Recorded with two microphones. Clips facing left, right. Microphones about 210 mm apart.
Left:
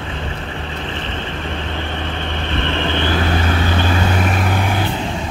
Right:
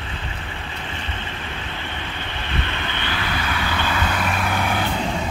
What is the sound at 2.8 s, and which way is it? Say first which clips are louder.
Vehicle: left 9 dB; 45° left (ahead or behind).